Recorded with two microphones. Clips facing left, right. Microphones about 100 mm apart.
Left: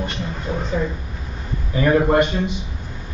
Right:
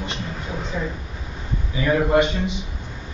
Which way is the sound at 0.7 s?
50° left (ahead or behind).